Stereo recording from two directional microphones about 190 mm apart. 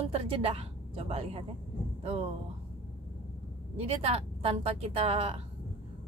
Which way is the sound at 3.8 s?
30° right (ahead or behind).